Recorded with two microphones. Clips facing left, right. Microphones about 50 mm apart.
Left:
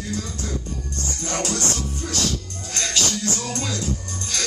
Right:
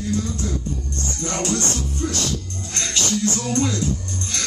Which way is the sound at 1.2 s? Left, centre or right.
Right.